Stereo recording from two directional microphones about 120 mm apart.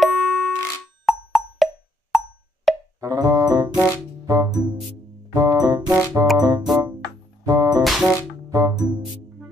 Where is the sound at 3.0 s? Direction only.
30° right (ahead or behind).